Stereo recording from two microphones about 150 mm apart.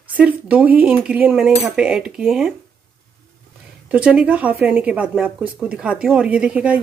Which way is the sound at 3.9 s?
10° right (ahead or behind).